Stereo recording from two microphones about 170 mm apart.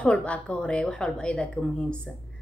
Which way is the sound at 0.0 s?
5° left (ahead or behind).